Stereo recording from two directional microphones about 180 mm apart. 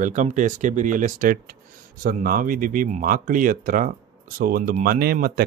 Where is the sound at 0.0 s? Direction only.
45° right (ahead or behind).